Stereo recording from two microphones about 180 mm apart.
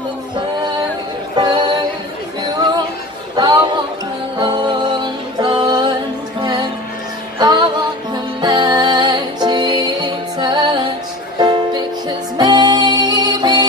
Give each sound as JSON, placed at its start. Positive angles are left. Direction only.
{"t": 1.3, "sound": "music", "side_deg": -25}
{"t": 3.3, "sound": "music", "side_deg": -25}
{"t": 7.3, "sound": "music", "side_deg": -25}